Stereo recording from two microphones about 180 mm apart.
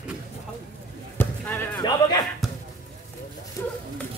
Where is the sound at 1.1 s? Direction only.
10° left (ahead or behind).